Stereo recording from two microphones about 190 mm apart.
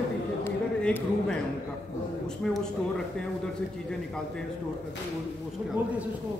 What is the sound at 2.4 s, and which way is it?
Speech, 5° left (ahead or behind).